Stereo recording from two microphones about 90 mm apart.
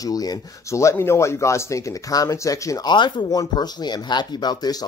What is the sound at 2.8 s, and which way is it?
Speech, 55° left (ahead or behind).